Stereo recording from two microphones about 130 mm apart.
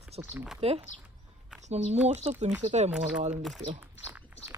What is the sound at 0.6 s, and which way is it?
A woman's voice, 50° right (ahead or behind).